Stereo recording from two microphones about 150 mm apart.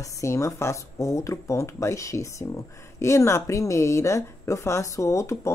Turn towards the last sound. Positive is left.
turn(degrees=20)  # may be behind; listen again after turning